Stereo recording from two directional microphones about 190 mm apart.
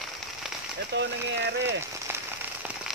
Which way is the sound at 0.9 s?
65° right (ahead or behind).